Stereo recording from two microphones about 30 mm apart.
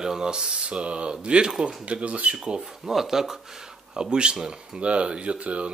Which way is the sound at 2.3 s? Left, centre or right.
Right.